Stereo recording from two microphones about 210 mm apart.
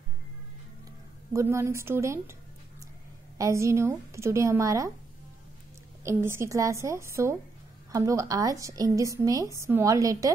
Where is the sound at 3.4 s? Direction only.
15° right (ahead or behind).